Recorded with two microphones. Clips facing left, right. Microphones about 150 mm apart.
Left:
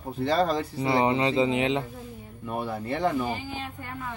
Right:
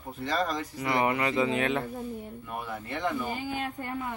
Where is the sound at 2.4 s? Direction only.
35° left (ahead or behind).